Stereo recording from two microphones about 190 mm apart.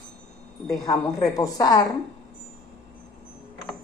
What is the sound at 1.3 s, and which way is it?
Speech, 20° left (ahead or behind).